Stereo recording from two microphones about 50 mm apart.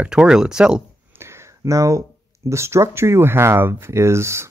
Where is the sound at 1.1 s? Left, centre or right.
Right.